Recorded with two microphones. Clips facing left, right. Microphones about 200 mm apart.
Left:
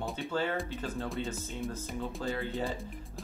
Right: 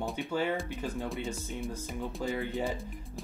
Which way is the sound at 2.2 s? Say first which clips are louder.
Right 3 dB; 15° right (ahead or behind).